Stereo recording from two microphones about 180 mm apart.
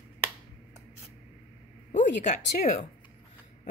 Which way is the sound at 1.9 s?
40° left (ahead or behind).